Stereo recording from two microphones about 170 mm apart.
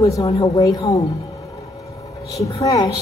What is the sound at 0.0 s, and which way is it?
Speech, 20° left (ahead or behind).